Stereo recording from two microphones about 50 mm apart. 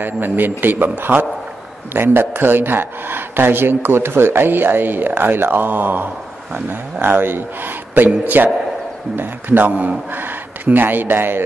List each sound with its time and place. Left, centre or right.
0.0 s speech: right
9.7 s a man's voice: right
10.1 s speech: right